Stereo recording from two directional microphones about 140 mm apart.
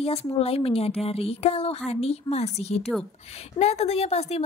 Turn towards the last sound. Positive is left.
turn(degrees=45)  # may be behind; listen again after turning